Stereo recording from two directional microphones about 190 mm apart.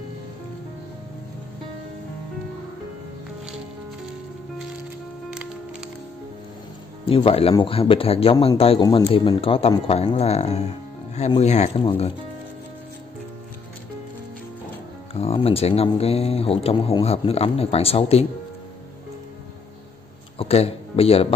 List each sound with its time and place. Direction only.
7.1 s speech: 30° left (ahead or behind)
15.1 s speech: 30° left (ahead or behind)
20.3 s speech: 30° left (ahead or behind)